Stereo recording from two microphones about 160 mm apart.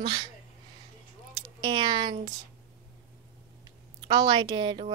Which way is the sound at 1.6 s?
25° right (ahead or behind).